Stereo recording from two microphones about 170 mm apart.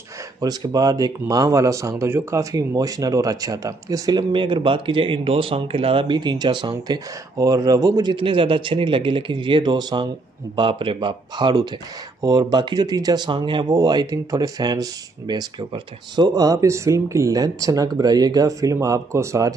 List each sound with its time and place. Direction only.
0.4 s speech: 25° right (ahead or behind)